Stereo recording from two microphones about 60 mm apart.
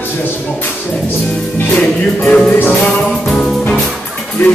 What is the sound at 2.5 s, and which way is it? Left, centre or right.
Speech, left.